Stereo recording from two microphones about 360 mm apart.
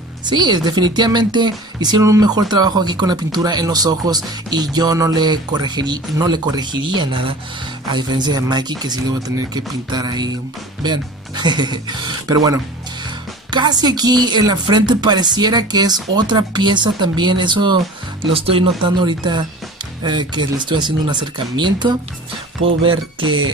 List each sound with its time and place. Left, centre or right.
0.2 s speech: centre